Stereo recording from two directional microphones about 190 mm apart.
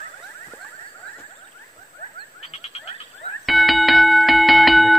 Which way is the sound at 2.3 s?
30° left (ahead or behind).